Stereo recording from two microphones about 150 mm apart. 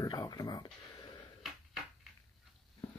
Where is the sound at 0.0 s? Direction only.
25° left (ahead or behind).